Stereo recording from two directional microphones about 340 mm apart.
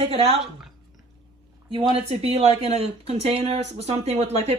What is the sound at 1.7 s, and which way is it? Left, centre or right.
Speech, centre.